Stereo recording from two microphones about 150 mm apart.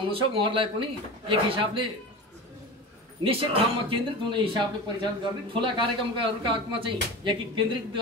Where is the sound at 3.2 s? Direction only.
40° right (ahead or behind).